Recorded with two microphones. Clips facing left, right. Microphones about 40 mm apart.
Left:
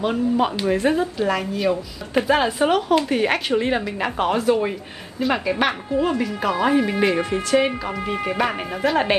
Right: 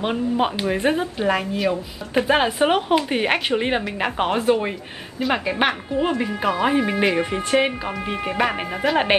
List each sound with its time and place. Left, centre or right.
0.0 s speech: right
1.6 s speech: centre
2.2 s speech: centre